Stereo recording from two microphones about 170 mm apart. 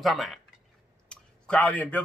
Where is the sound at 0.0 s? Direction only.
Centre (ahead or behind).